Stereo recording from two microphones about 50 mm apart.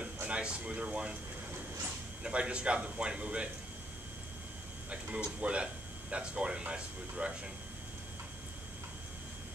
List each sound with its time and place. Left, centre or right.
0.0 s speech: right
2.2 s speech: right
4.8 s speech: right